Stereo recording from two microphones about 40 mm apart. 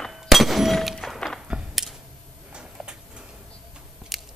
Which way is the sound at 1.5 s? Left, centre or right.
Centre.